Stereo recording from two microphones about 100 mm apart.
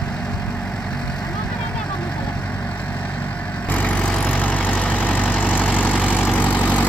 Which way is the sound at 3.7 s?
15° left (ahead or behind).